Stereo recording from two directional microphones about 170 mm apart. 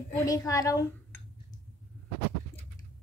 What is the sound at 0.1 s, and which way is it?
Speech, 20° left (ahead or behind).